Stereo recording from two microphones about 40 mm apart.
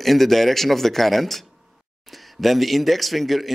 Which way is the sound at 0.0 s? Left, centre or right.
Centre.